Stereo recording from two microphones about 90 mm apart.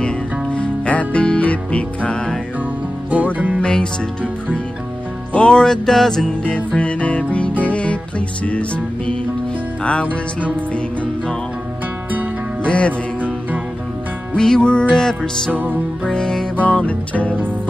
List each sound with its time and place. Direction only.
0.0 s music: 10° left (ahead or behind)
3.6 s music: 10° left (ahead or behind)
5.3 s music: 10° left (ahead or behind)
10.4 s music: 15° left (ahead or behind)
12.6 s music: 15° left (ahead or behind)
14.3 s music: 5° left (ahead or behind)